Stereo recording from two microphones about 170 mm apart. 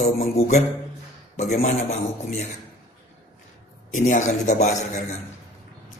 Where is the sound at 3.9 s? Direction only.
45° left (ahead or behind).